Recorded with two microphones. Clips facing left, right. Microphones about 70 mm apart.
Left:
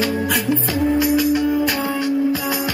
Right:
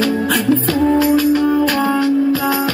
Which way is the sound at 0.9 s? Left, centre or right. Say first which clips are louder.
Right 3 dB; centre.